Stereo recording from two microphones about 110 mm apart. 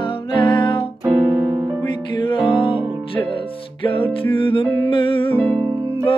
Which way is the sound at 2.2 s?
45° left (ahead or behind).